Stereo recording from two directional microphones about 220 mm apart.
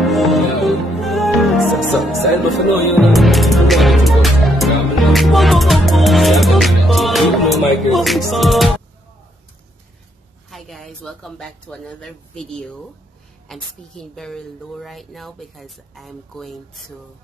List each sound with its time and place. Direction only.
0.0 s music: centre (ahead or behind)
7.9 s a woman's voice: centre (ahead or behind)
10.5 s a woman's voice: centre (ahead or behind)